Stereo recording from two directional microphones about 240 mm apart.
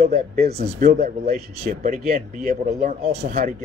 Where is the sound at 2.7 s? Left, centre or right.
Right.